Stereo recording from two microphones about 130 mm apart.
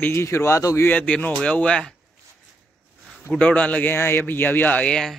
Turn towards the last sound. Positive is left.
turn(degrees=5)  # may be behind; listen again after turning